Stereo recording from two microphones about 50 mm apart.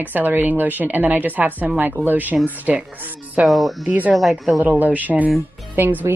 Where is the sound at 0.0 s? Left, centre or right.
Right.